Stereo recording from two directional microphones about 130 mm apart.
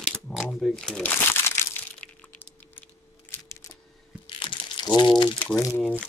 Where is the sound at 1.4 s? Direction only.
15° left (ahead or behind).